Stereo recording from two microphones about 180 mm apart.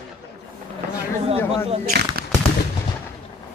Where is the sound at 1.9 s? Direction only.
65° right (ahead or behind).